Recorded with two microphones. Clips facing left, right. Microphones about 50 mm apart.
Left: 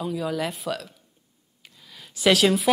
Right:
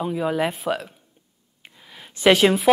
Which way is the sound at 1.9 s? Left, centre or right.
Right.